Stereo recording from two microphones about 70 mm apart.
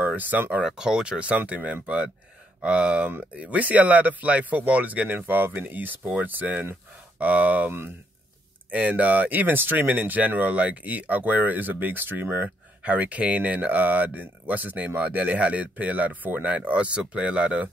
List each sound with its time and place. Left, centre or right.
0.0 s speech: right
0.7 s speech: centre; by 12.4 s right
12.8 s speech: right